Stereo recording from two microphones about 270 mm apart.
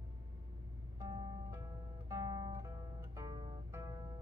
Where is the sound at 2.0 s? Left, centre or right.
Centre.